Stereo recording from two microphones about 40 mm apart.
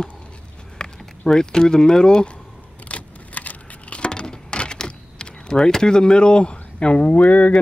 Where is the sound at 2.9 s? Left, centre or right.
Left.